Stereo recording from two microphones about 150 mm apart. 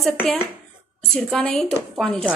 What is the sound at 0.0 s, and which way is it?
A woman's voice, 10° left (ahead or behind).